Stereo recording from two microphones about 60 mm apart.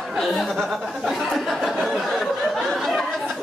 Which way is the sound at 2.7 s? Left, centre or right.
Centre.